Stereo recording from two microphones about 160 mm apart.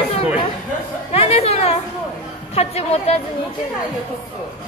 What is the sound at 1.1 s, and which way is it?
Chatter, 40° left (ahead or behind).